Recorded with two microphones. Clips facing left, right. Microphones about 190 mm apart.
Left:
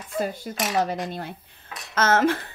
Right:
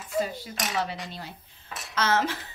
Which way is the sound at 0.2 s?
50° left (ahead or behind).